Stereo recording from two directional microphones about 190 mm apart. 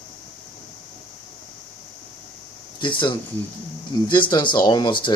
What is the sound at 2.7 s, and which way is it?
Speech, 25° left (ahead or behind).